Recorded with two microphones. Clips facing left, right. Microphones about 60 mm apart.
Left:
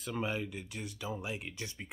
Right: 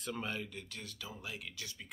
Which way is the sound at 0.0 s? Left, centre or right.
Centre.